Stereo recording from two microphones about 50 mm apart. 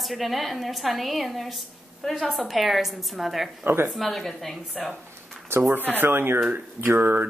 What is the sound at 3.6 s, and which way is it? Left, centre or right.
Speech, right.